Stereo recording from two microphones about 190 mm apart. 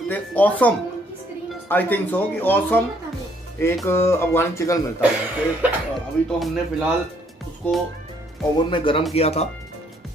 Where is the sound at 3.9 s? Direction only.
15° left (ahead or behind).